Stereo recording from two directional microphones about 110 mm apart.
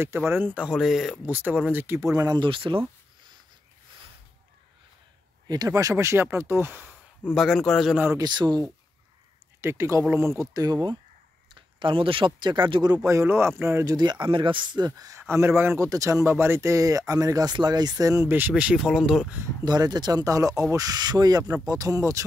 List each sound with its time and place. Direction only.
0.0 s speech: 20° right (ahead or behind)
0.6 s speech: 5° right (ahead or behind)
1.2 s speech: 15° right (ahead or behind)
2.1 s speech: 40° right (ahead or behind)
5.7 s speech: 30° right (ahead or behind)
7.3 s speech: centre (ahead or behind)
8.2 s speech: 40° right (ahead or behind)
9.6 s speech: 25° right (ahead or behind); by 11.0 s 40° right (ahead or behind)
11.5 s speech: 50° right (ahead or behind)
13.0 s speech: 25° right (ahead or behind)
13.8 s speech: 40° right (ahead or behind); by 18.5 s 20° right (ahead or behind)
18.5 s speech: 5° right (ahead or behind)
19.6 s speech: 40° right (ahead or behind)